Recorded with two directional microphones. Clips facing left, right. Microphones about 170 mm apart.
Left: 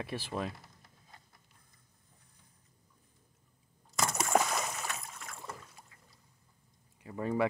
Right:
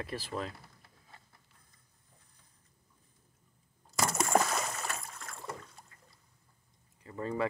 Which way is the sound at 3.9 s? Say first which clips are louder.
Right 1 dB; centre (ahead or behind).